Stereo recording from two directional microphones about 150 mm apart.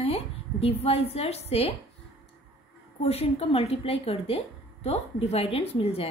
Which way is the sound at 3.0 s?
40° left (ahead or behind).